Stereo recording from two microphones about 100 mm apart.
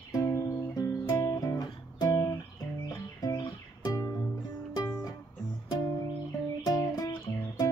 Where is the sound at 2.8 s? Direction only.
40° left (ahead or behind).